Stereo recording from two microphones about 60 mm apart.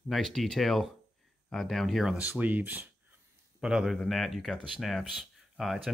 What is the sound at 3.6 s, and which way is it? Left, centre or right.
Speech, centre.